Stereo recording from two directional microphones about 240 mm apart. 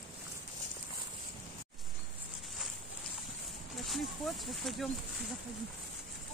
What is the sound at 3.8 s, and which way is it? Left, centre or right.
Speech, centre.